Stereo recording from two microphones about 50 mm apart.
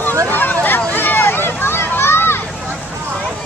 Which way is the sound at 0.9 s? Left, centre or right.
Left.